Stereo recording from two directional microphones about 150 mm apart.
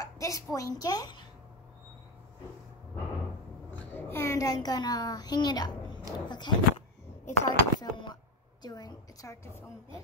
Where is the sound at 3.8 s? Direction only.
15° left (ahead or behind).